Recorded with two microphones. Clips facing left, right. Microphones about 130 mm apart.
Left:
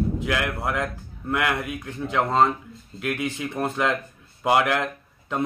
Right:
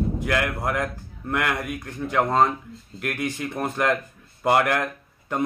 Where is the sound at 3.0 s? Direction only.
5° left (ahead or behind).